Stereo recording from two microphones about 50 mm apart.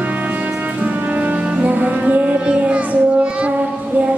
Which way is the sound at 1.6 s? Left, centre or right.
Right.